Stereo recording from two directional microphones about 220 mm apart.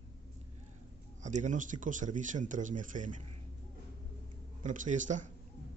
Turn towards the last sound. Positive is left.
turn(degrees=-35)  # may be behind; listen again after turning